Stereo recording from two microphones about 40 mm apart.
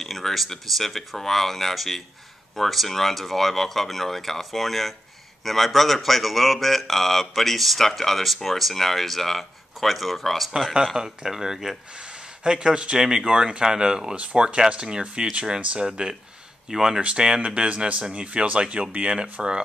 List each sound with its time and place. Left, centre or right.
0.0 s speech: centre
11.0 s speech: centre
12.0 s speech: right
17.0 s speech: right